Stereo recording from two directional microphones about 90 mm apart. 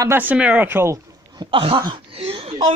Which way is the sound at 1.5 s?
80° right.